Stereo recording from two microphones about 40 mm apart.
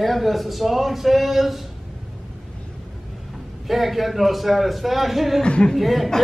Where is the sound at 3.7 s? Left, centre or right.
Centre.